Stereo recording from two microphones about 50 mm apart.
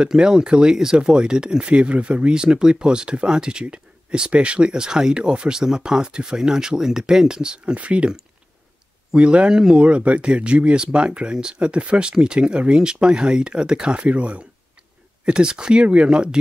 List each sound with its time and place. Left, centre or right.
0.0 s speech: centre
9.1 s speech: right
9.8 s speech: right
15.2 s speech: centre